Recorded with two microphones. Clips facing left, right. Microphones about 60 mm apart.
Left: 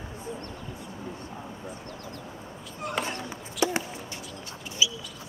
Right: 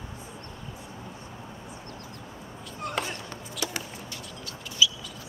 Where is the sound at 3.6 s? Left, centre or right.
Left.